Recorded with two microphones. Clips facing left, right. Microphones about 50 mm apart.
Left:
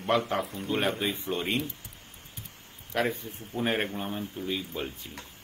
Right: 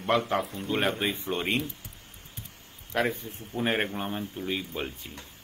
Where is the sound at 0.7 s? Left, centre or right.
Right.